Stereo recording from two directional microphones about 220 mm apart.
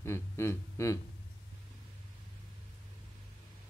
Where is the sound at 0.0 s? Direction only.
10° left (ahead or behind).